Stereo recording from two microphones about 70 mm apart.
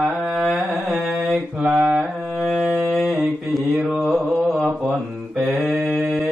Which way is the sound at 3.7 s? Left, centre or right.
Centre.